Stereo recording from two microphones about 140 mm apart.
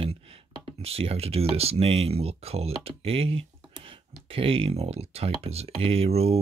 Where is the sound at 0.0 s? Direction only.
45° right (ahead or behind).